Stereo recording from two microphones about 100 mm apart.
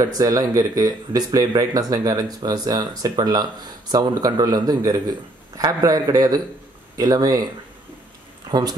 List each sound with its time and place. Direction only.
0.0 s speech: 35° right (ahead or behind)
8.5 s speech: 45° right (ahead or behind)